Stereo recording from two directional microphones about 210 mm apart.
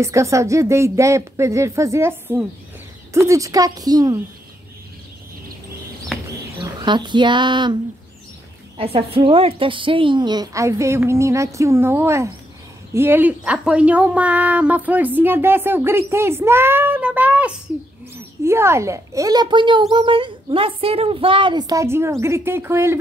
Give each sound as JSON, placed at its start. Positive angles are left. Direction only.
{"t": 0.0, "sound": "speech", "side_deg": -15}
{"t": 6.6, "sound": "speech", "side_deg": -20}
{"t": 8.7, "sound": "speech", "side_deg": -25}